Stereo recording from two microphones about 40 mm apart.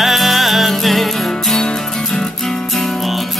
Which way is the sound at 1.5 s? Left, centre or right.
Centre.